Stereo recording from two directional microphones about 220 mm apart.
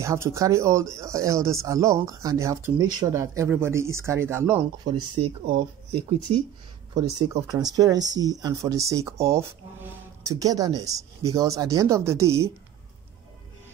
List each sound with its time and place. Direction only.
0.0 s speech: 15° right (ahead or behind)
6.3 s speech: 25° right (ahead or behind)